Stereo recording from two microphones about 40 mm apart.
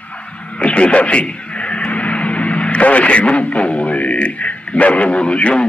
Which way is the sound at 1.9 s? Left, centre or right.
Left.